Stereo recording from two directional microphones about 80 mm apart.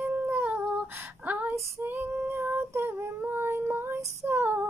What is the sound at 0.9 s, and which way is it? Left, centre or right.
Female singing, right.